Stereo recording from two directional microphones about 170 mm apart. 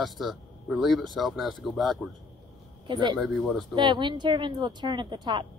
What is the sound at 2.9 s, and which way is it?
Speech, 25° right (ahead or behind).